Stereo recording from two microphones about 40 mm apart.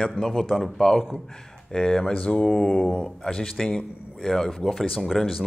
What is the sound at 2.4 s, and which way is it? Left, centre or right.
A man's voice, centre.